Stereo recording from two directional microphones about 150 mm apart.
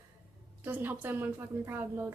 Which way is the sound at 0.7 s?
10° right (ahead or behind).